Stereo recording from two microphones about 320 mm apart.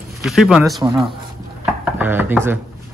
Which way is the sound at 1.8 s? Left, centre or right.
Centre.